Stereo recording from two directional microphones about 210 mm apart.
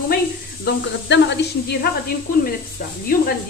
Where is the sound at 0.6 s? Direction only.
55° left (ahead or behind).